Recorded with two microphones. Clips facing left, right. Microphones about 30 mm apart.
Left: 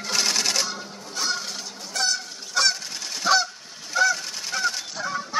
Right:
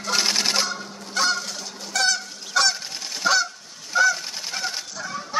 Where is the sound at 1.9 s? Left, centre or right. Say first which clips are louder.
Right 4 dB; right.